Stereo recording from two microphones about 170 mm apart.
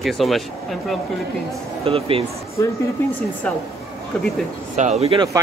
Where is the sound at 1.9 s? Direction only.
35° right (ahead or behind).